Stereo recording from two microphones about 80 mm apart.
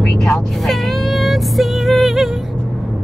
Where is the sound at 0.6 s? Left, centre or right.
Centre.